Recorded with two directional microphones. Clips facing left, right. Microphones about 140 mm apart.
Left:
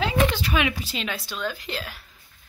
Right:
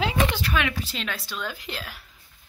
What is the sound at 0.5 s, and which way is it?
Speech, 10° left (ahead or behind).